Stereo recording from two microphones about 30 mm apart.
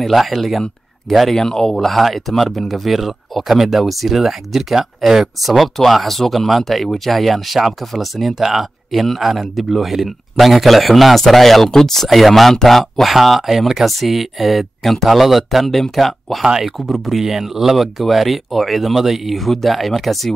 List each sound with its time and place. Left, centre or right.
0.0 s speech: centre
1.3 s speech: centre
1.9 s speech: centre
8.3 s speech: centre
15.1 s speech: centre
15.6 s speech: centre
16.4 s speech: centre
16.7 s speech: centre
17.2 s speech: centre